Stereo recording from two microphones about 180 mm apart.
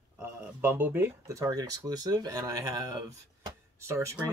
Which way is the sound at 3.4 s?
15° right (ahead or behind).